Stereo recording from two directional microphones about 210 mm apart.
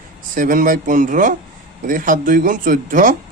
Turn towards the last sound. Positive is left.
turn(degrees=-40)  # may be behind; listen again after turning